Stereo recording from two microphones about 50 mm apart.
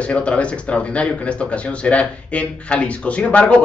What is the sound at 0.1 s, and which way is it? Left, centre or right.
Speech, left.